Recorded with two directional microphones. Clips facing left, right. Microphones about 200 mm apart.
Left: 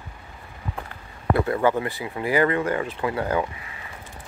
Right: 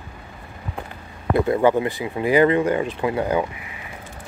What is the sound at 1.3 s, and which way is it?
Speech, 20° right (ahead or behind).